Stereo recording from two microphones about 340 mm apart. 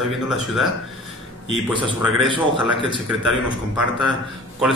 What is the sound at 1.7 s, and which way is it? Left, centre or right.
Speech, centre.